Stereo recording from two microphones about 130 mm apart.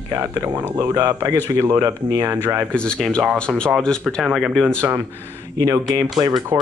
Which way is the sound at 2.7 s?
5° left (ahead or behind).